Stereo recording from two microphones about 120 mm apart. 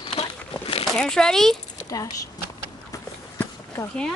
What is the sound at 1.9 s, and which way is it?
Speech, 30° left (ahead or behind).